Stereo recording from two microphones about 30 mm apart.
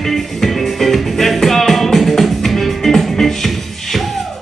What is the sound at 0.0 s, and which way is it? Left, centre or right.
Music, centre.